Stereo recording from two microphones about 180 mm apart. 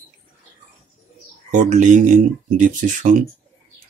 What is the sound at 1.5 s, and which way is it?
Speech, 40° right (ahead or behind).